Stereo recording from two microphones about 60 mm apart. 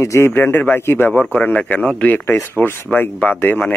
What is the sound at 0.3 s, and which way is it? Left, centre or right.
Speech, left.